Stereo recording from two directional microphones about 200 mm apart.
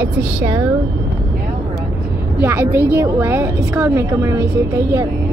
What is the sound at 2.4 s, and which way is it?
A woman's voice, 10° right (ahead or behind).